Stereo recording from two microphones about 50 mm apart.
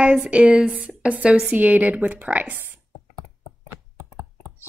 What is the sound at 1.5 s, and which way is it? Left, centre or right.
A woman's voice, right.